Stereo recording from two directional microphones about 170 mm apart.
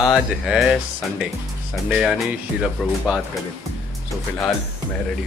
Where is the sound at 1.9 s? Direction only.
Centre (ahead or behind).